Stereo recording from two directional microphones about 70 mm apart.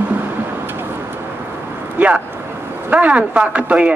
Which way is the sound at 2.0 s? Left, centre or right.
Right.